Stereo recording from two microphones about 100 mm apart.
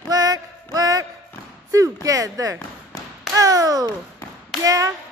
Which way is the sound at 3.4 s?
35° right (ahead or behind).